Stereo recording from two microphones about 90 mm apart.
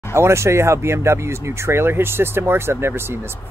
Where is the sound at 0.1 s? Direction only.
30° right (ahead or behind).